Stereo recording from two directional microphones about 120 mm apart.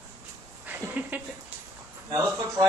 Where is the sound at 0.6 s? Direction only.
15° right (ahead or behind).